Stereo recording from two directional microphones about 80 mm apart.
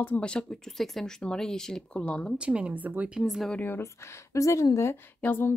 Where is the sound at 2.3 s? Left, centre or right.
Centre.